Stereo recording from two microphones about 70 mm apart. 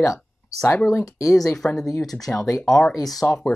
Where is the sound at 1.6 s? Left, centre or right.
Centre.